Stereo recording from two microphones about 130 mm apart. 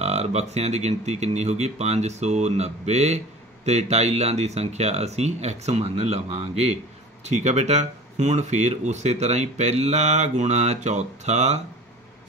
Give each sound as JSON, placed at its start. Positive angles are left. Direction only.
{"t": 0.0, "sound": "speech", "side_deg": -55}